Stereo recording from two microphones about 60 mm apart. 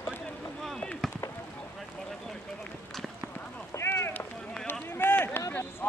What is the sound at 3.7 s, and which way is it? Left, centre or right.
Run, left.